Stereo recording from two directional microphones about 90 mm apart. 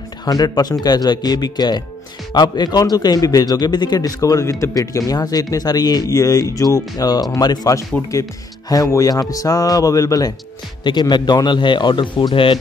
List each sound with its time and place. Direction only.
0.2 s a man's voice: 45° left (ahead or behind)
10.8 s speech: 55° left (ahead or behind)